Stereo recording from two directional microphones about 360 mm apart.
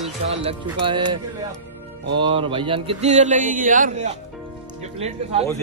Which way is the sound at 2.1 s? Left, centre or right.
Centre.